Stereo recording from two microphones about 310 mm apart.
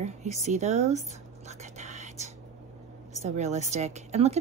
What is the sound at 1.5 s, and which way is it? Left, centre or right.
Whispering, right.